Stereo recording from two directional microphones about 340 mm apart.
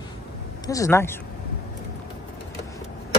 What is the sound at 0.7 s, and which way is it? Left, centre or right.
Speech, centre.